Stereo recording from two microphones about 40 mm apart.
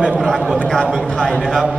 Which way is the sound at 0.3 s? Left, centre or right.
Centre.